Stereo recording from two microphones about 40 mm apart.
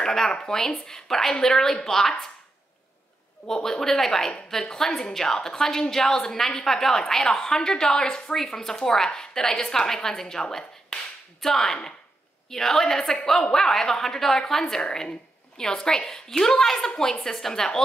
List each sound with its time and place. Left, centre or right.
0.0 s a woman's voice: centre
3.4 s a woman's voice: centre
14.8 s a woman's voice: left